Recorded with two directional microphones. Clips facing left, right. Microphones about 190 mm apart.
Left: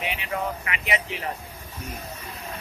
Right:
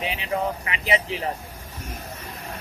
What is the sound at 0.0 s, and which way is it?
Speech, 30° right (ahead or behind).